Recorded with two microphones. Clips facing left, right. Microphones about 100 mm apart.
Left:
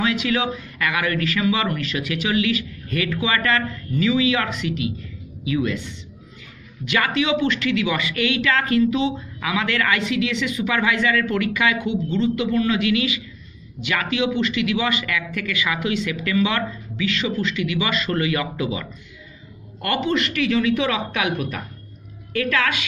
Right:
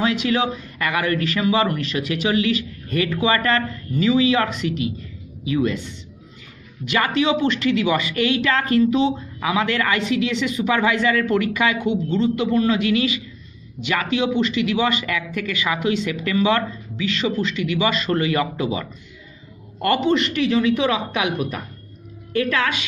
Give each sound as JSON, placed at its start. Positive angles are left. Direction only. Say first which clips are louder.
{"t": 0.0, "sound": "a woman's voice", "louder": "right 2 dB", "side_deg": -35}